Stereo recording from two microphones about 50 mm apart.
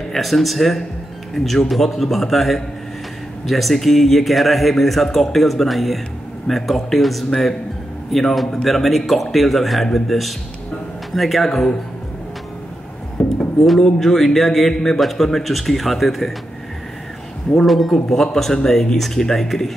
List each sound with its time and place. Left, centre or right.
0.1 s speech: centre
13.2 s a sound: left
13.7 s speech: centre
17.6 s speech: centre